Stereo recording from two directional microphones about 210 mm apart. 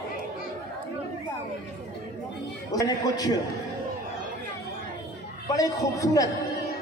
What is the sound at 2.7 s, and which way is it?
Speech, 15° left (ahead or behind).